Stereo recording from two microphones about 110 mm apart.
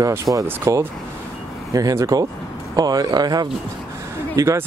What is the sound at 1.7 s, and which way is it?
Speech, 30° right (ahead or behind).